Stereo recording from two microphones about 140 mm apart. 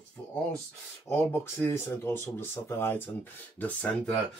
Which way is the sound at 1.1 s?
15° left (ahead or behind).